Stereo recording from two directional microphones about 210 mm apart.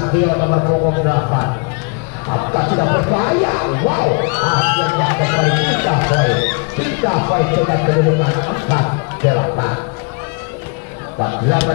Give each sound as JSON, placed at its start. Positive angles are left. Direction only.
{"t": 0.3, "sound": "a man's voice", "side_deg": 20}